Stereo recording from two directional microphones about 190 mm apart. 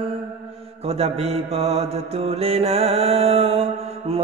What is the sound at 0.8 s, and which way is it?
Music, 30° right (ahead or behind).